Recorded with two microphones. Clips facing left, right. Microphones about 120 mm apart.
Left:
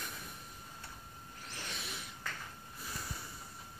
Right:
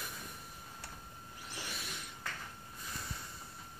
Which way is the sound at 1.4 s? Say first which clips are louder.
Right 1 dB; 15° right (ahead or behind).